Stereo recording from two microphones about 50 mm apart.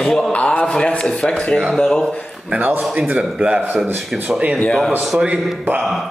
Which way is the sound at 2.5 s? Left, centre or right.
Right.